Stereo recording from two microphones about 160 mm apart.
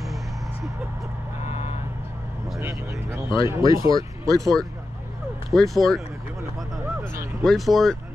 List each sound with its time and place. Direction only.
1.4 s vehicle: 40° left (ahead or behind)
2.6 s a sound: 20° right (ahead or behind)
3.8 s speech: 20° right (ahead or behind)
5.5 s speech: centre (ahead or behind)
7.4 s speech: centre (ahead or behind)